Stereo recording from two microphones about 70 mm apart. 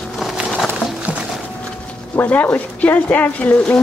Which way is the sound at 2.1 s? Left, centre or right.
Left.